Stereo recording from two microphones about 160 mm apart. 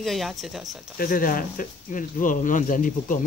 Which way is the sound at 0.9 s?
60° left (ahead or behind).